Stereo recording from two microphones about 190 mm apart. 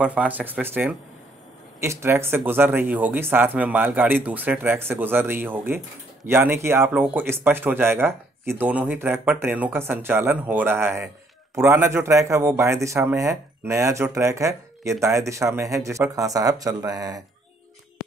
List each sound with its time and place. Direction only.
0.0 s a man's voice: 5° right (ahead or behind)